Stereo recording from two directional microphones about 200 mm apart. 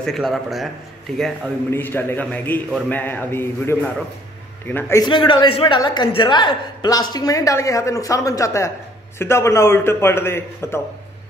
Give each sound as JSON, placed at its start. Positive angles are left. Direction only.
{"t": 0.0, "sound": "a man's voice", "side_deg": 0}